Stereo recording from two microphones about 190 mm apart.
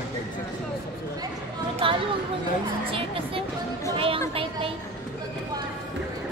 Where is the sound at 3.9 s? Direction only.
30° right (ahead or behind).